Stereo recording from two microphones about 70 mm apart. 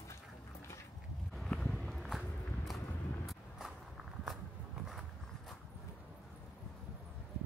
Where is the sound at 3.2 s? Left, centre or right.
Centre.